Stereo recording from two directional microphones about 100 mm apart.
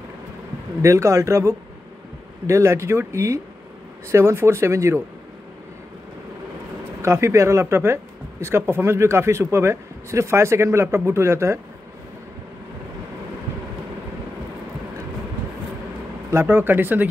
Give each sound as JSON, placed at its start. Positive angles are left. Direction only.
{"t": 0.8, "sound": "speech", "side_deg": -30}
{"t": 7.0, "sound": "speech", "side_deg": -30}
{"t": 16.3, "sound": "speech", "side_deg": -25}